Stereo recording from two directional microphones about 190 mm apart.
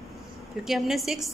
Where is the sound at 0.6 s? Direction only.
Centre (ahead or behind).